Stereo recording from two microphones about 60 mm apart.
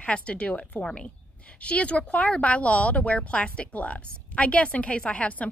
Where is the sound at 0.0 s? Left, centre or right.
Centre.